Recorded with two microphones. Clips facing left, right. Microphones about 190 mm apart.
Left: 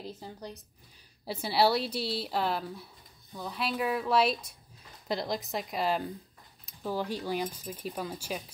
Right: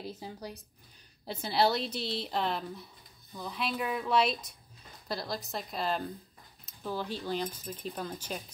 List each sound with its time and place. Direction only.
0.0 s a woman's voice: 10° right (ahead or behind)
1.2 s a woman's voice: 5° left (ahead or behind)
5.0 s speech: 20° left (ahead or behind)